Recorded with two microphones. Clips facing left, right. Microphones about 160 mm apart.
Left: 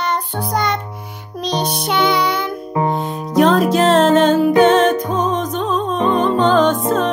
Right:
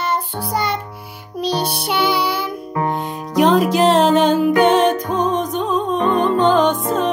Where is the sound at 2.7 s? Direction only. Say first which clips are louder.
Left 3 dB; 20° left (ahead or behind).